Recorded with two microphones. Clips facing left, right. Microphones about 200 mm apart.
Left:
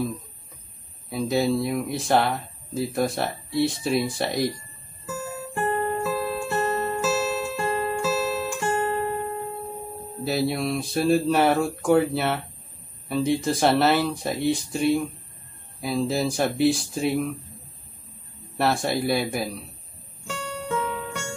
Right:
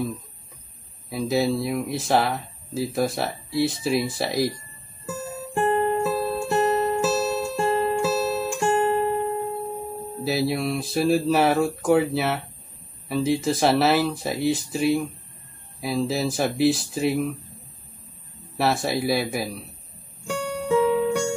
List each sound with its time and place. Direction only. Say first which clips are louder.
1.1 s speech: even; centre (ahead or behind)
5.5 s music: right 4 dB; 15° right (ahead or behind)
10.2 s speech: right 1 dB; centre (ahead or behind)
18.6 s speech: even; centre (ahead or behind)
20.2 s music: right 6 dB; 15° right (ahead or behind)